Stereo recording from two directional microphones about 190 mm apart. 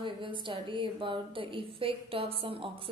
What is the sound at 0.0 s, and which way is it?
A woman's voice, 25° right (ahead or behind).